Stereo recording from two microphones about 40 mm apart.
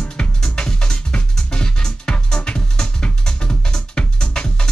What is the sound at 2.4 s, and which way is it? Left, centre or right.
Music, left.